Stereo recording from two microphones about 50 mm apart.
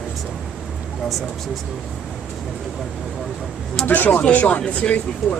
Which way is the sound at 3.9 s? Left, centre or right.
Left.